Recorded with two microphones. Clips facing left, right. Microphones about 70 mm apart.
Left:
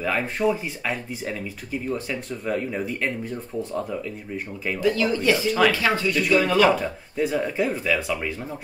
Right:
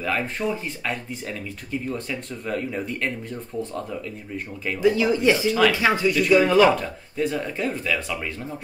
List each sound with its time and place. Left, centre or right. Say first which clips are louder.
0.0 s speech: left 2 dB; centre
4.7 s speech: right 3 dB; centre
6.7 s speech: left 1 dB; centre